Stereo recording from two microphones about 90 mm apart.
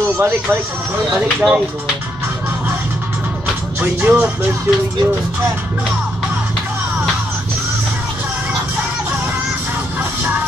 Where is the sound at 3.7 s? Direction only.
15° right (ahead or behind).